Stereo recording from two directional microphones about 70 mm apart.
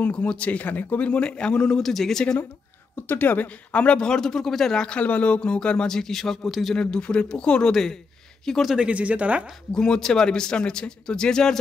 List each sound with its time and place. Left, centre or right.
0.0 s speech: centre
3.1 s speech: left; by 6.7 s centre
6.7 s speech: centre
8.7 s speech: centre
9.7 s speech: centre